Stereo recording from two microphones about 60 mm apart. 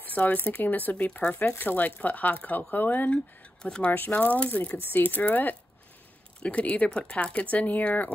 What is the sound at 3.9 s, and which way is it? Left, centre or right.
Speech, left.